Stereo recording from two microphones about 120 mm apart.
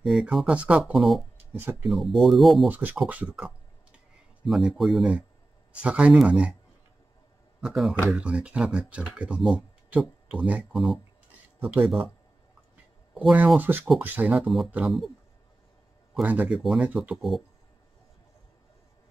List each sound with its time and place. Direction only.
0.0 s speech: 5° right (ahead or behind)
1.5 s speech: 15° right (ahead or behind)
1.9 s speech: centre (ahead or behind)
2.7 s speech: 15° right (ahead or behind)
7.6 s speech: centre (ahead or behind)
11.6 s speech: 15° right (ahead or behind)
13.1 s speech: 10° right (ahead or behind)
16.2 s speech: 10° right (ahead or behind)